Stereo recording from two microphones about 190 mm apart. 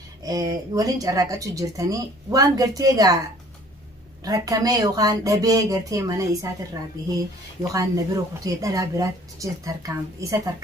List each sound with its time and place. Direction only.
0.2 s speech: 20° right (ahead or behind)
4.2 s speech: 20° right (ahead or behind)